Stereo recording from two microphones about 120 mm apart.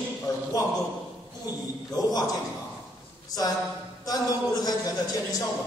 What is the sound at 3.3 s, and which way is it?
A man's voice, 30° left (ahead or behind).